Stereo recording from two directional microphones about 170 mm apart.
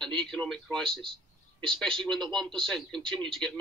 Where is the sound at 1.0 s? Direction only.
30° right (ahead or behind).